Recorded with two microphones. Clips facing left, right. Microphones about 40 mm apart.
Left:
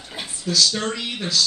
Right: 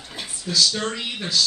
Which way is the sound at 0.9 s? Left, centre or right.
Centre.